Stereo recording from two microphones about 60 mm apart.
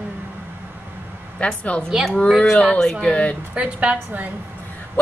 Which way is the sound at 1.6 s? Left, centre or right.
Left.